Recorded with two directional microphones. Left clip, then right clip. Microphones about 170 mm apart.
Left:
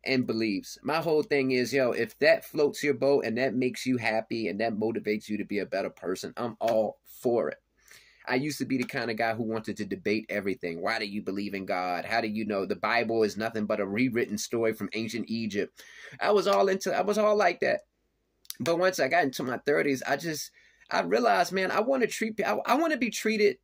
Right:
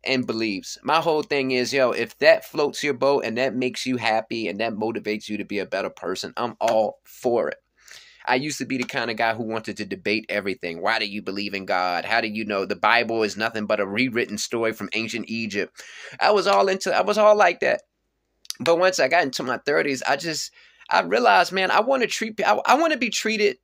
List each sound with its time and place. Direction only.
0.0 s speech: 15° left (ahead or behind)